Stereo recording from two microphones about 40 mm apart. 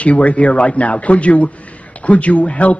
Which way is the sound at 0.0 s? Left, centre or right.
Left.